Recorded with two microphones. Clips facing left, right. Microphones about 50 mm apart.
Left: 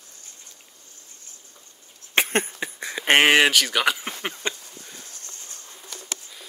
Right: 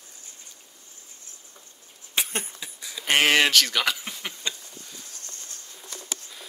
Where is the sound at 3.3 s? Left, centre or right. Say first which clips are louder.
Left 3 dB; centre.